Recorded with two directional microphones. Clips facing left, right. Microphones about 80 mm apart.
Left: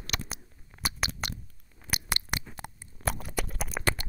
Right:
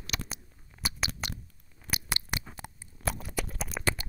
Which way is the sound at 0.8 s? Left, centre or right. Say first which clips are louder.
Left 2 dB; left.